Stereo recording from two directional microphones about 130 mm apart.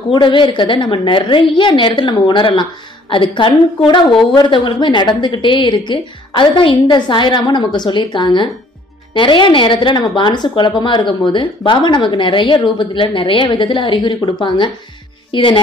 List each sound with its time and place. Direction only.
0.1 s a woman's voice: 40° left (ahead or behind)